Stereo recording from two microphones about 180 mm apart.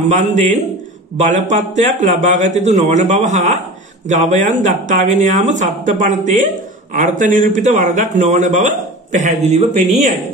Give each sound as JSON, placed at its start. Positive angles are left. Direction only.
{"t": 1.1, "sound": "a man's voice", "side_deg": -40}